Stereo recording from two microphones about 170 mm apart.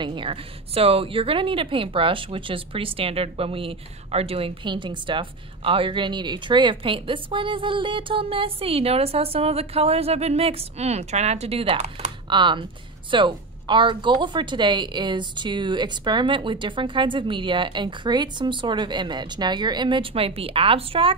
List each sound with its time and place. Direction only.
0.0 s a woman's voice: 30° right (ahead or behind)